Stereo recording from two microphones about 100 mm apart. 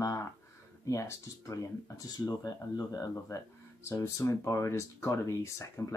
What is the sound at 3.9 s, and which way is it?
Speech, 30° left (ahead or behind).